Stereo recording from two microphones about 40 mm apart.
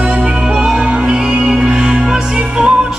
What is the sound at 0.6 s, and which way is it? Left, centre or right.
Music, centre.